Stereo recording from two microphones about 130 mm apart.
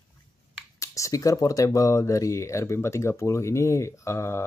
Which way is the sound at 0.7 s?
25° left (ahead or behind).